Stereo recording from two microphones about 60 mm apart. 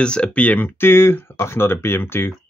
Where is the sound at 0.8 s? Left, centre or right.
Left.